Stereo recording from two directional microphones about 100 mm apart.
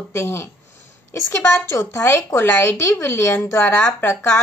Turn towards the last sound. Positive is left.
turn(degrees=25)  # may be behind; listen again after turning